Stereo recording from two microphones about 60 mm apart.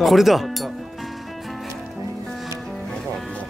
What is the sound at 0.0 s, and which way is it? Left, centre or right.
Speech, centre.